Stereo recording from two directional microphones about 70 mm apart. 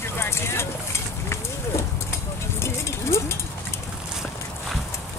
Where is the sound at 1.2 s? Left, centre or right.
Left.